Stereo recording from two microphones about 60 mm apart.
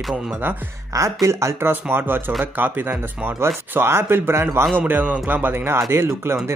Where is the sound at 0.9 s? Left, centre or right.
Right.